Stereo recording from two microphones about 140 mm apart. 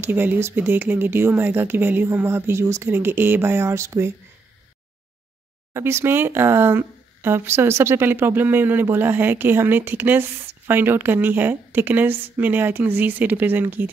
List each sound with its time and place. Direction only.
0.0 s speech: 15° right (ahead or behind)
5.7 s speech: 20° right (ahead or behind)